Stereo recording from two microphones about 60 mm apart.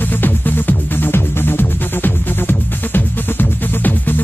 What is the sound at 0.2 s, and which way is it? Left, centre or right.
Music, left.